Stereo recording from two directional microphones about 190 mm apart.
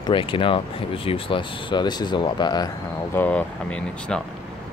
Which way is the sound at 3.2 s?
5° left (ahead or behind).